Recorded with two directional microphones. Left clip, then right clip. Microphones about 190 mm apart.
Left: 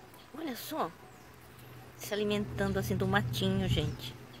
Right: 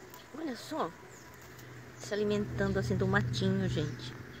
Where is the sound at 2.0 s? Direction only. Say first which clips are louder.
Right 1 dB; centre (ahead or behind).